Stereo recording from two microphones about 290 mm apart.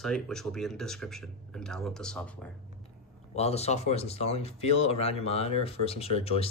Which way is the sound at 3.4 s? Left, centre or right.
Left.